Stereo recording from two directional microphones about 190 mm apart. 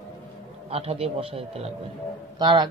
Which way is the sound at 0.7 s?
30° right (ahead or behind).